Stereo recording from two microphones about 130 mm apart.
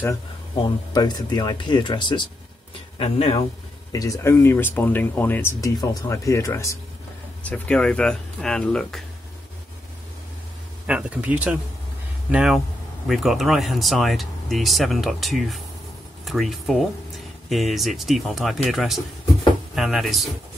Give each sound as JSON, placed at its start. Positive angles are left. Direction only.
{"t": 0.6, "sound": "speech", "side_deg": 30}
{"t": 3.0, "sound": "speech", "side_deg": 45}
{"t": 3.9, "sound": "speech", "side_deg": 25}
{"t": 7.4, "sound": "speech", "side_deg": 10}
{"t": 10.9, "sound": "speech", "side_deg": -10}